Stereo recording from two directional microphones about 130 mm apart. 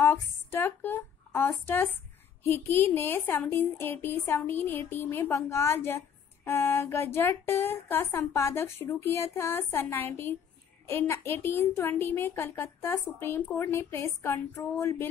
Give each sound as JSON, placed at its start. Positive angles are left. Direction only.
{"t": 0.0, "sound": "a woman's voice", "side_deg": 15}